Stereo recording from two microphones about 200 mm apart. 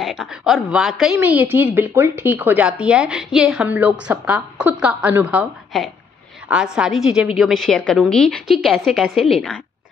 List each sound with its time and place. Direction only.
0.0 s a woman's voice: centre (ahead or behind)